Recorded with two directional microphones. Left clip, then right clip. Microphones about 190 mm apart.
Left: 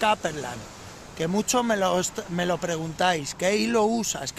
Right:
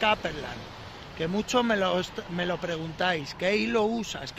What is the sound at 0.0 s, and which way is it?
Speech, 40° left (ahead or behind).